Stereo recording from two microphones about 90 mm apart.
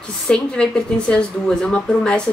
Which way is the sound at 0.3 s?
10° left (ahead or behind).